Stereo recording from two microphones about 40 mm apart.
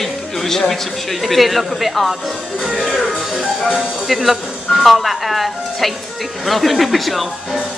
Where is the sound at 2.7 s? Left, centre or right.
Centre.